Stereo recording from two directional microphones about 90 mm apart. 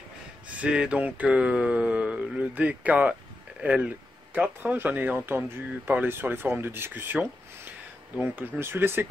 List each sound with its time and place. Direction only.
0.6 s speech: 10° right (ahead or behind)